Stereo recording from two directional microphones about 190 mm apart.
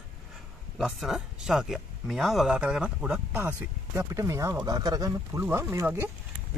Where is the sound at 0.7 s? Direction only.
Centre (ahead or behind).